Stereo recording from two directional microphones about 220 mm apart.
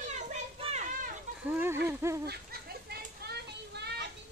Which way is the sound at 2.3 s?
45° right (ahead or behind).